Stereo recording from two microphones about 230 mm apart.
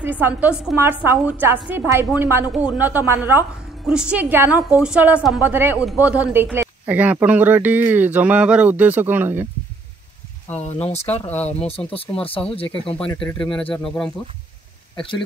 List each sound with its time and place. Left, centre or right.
0.0 s a woman's voice: centre
10.9 s speech: left
11.2 s speech: centre
11.9 s speech: left
12.9 s speech: centre
15.0 s speech: left